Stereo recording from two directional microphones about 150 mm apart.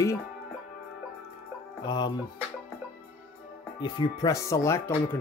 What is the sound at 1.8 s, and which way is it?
Speech, 30° left (ahead or behind).